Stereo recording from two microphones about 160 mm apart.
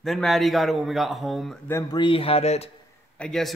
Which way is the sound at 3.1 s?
5° left (ahead or behind).